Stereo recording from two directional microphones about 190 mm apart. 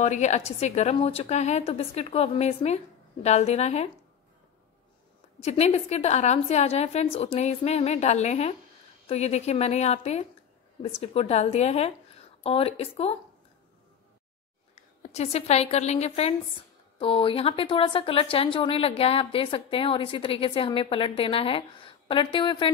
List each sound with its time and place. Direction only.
0.0 s a woman's voice: 35° left (ahead or behind)
5.4 s a woman's voice: 35° left (ahead or behind)
15.1 s a woman's voice: 35° left (ahead or behind)